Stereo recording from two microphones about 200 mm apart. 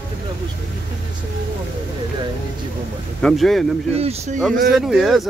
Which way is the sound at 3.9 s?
30° right (ahead or behind).